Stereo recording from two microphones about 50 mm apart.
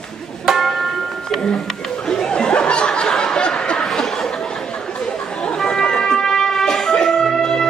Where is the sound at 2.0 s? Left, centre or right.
Centre.